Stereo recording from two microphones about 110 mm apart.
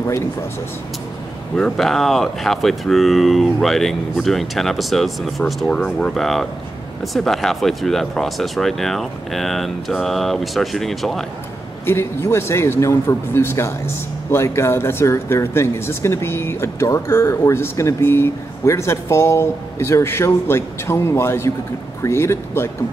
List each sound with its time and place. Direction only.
1.6 s speech: centre (ahead or behind)
11.8 s speech: 25° left (ahead or behind)